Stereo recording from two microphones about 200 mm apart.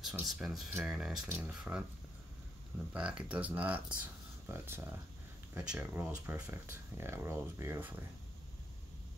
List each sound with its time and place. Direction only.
0.0 s speech: centre (ahead or behind)
2.9 s speech: 5° right (ahead or behind)